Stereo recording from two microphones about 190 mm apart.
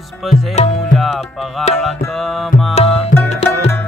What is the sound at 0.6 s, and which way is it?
Music, 40° left (ahead or behind).